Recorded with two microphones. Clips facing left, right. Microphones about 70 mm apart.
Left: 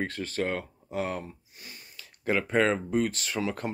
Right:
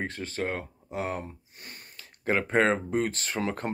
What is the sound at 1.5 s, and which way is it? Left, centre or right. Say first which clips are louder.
Speech: right 1 dB; right.